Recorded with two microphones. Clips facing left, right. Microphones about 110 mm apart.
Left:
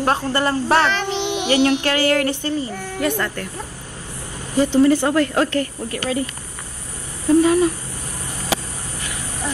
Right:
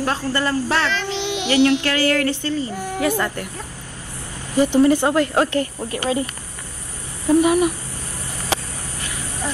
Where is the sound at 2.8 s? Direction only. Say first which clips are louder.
Right 1 dB; 10° right (ahead or behind).